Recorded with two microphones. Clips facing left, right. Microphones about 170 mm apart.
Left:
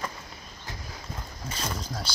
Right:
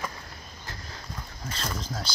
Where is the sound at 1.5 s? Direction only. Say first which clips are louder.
Even; 10° left (ahead or behind).